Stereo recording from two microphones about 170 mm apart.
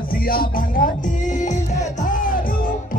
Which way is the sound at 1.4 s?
45° left (ahead or behind).